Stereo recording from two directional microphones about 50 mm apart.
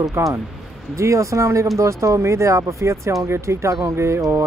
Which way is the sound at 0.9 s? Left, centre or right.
Right.